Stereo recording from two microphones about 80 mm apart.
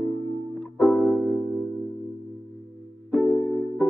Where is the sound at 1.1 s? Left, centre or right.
Centre.